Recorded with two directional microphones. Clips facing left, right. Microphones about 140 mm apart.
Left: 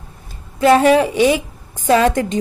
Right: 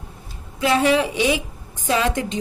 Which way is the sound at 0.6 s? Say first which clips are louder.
Left 6 dB; 45° left (ahead or behind).